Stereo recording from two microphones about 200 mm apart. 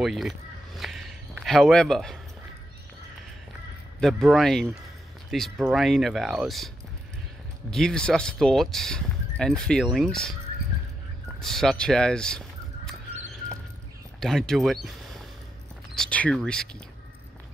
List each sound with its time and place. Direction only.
0.0 s a sound: centre (ahead or behind)
4.0 s speech: centre (ahead or behind)
7.7 s speech: 5° left (ahead or behind)
11.3 s speech: centre (ahead or behind)
14.2 s speech: centre (ahead or behind)